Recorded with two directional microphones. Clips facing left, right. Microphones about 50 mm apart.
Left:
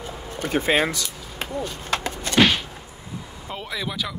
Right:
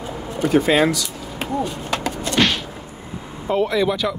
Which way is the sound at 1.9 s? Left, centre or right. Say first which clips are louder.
Right 3 dB; left.